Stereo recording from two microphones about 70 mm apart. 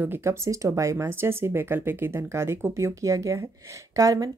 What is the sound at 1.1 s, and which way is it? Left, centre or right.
Speech, right.